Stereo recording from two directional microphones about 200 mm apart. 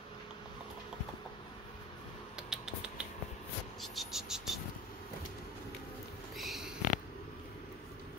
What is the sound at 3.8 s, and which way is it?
Cricket, centre (ahead or behind).